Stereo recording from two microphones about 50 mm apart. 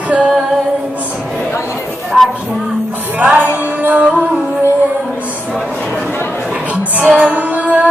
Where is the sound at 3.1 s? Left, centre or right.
Right.